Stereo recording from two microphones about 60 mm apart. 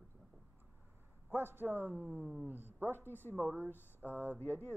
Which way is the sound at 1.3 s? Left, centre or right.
Right.